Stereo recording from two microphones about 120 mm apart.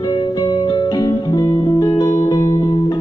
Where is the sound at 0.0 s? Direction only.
30° left (ahead or behind).